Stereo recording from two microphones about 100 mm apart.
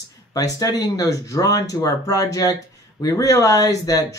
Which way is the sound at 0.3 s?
35° left (ahead or behind).